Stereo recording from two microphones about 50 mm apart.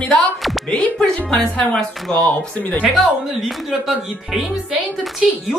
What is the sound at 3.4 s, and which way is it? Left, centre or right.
Speech, centre.